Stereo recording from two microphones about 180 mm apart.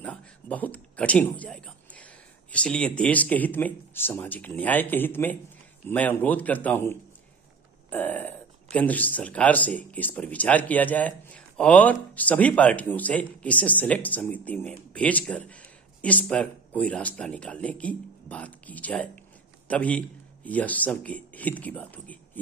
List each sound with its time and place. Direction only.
0.0 s a man's voice: 5° left (ahead or behind)